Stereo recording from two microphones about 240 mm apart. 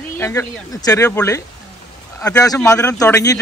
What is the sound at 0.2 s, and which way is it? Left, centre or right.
Speech, centre.